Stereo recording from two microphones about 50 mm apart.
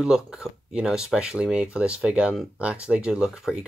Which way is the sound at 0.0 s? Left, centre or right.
Centre.